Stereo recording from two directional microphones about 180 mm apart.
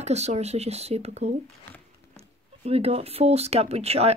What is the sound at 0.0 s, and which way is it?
Speech, 40° right (ahead or behind).